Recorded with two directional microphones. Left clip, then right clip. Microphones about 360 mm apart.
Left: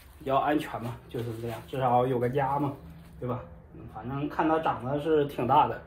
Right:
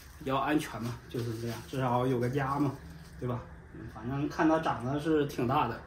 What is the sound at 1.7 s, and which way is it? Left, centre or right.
Speech, centre.